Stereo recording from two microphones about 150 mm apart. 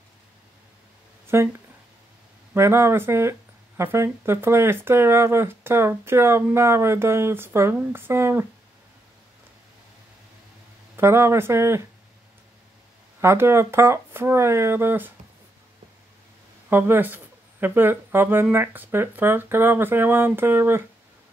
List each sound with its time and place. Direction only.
1.2 s a sound: 15° right (ahead or behind)
2.5 s speech: 15° right (ahead or behind)
11.0 s speech: 15° right (ahead or behind)
13.2 s speech: 15° right (ahead or behind)
16.6 s speech: 15° right (ahead or behind)